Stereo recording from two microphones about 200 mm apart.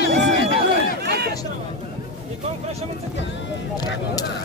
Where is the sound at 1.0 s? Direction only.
55° right (ahead or behind).